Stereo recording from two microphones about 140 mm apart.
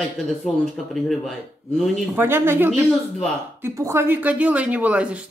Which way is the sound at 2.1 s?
15° right (ahead or behind).